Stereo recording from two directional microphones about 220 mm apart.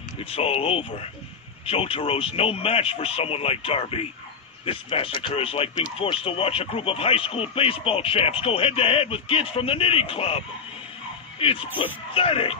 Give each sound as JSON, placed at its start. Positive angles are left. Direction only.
{"t": 0.2, "sound": "speech", "side_deg": 25}